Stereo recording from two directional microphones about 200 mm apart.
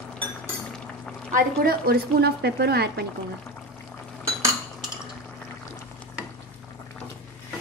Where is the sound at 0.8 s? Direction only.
5° left (ahead or behind).